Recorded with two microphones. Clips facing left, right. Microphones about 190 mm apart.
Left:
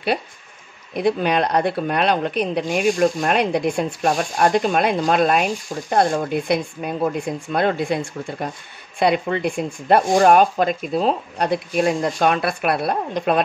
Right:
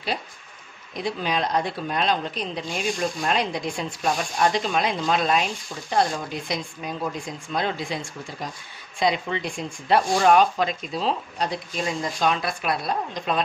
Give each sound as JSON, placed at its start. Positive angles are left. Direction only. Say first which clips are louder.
{"t": 0.9, "sound": "speech", "louder": "left 8 dB", "side_deg": 60}